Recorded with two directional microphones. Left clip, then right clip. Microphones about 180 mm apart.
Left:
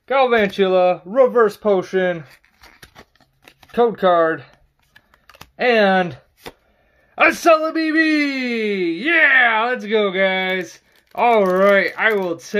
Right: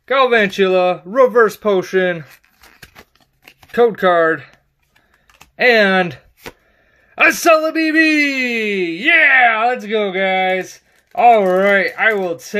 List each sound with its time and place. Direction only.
0.0 s speech: 20° right (ahead or behind)
2.6 s a sound: 15° right (ahead or behind)
3.7 s speech: 20° right (ahead or behind)
5.6 s speech: 25° right (ahead or behind); by 12.5 s 5° right (ahead or behind)